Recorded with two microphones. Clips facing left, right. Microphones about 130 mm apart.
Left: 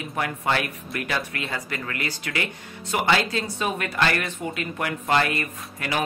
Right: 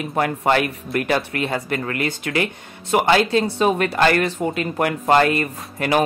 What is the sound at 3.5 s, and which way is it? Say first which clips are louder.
Speech: right 9 dB; 35° right (ahead or behind).